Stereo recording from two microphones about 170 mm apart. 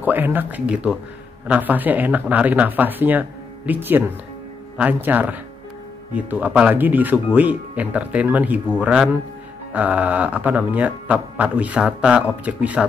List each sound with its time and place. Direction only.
0.0 s speech: 10° right (ahead or behind)